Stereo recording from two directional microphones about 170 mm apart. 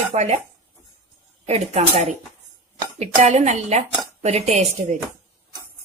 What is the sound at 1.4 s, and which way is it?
A woman's voice, 40° right (ahead or behind).